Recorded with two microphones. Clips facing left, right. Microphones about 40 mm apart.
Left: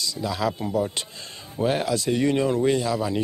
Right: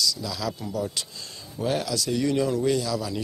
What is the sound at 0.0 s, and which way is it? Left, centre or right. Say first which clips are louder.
Speech: left 3 dB; left.